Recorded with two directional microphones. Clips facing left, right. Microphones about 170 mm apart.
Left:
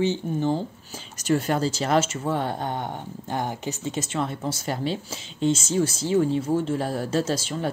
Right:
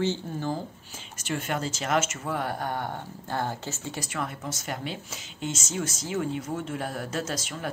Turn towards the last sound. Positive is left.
turn(degrees=30)  # may be behind; listen again after turning